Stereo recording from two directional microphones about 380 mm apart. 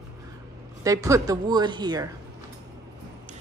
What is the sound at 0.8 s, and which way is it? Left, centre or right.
A woman's voice, centre.